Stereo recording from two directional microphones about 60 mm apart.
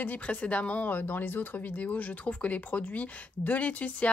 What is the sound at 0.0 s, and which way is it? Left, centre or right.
Speech, left.